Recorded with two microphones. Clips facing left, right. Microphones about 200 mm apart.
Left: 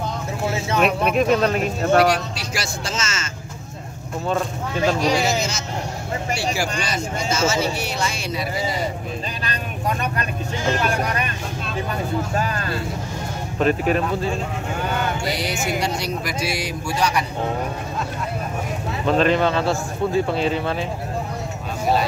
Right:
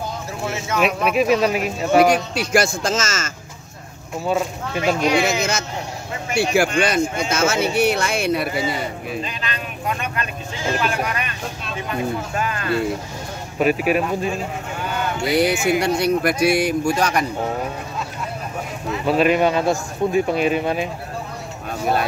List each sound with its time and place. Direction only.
0.5 s a sound: 30° left (ahead or behind)
0.7 s speech: 5° right (ahead or behind)
2.3 s a man's voice: 50° right (ahead or behind)
4.3 s a man's voice: 10° right (ahead or behind)
5.2 s speech: 55° right (ahead or behind)
9.4 s vehicle: 40° left (ahead or behind)
10.8 s speech: 40° left (ahead or behind)
12.4 s speech: 35° left (ahead or behind)
13.6 s a man's voice: 10° right (ahead or behind)
15.2 s speech: 55° right (ahead or behind)
19.0 s a man's voice: 10° right (ahead or behind)